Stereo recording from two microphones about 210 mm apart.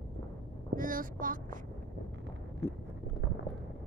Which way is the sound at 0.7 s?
40° right (ahead or behind).